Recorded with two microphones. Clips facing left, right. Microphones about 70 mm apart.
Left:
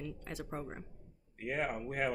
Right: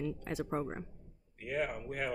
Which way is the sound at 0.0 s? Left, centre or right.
Centre.